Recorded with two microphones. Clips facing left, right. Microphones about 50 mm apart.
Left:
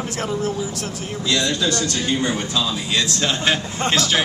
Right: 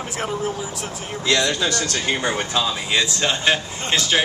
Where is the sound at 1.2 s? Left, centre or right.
Right.